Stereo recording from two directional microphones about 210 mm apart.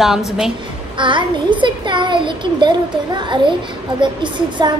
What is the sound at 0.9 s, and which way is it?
A child's voice, 25° right (ahead or behind).